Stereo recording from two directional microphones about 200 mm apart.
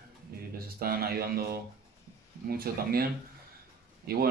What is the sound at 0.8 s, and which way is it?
Speech, 50° right (ahead or behind).